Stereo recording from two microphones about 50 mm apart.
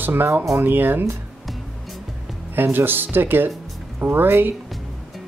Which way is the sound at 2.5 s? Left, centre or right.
Right.